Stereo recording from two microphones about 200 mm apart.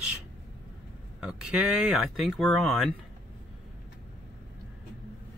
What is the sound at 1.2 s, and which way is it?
Speech, 5° right (ahead or behind).